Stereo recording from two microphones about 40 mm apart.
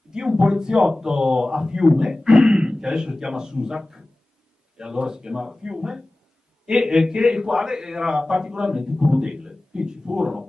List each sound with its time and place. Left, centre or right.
0.1 s speech: centre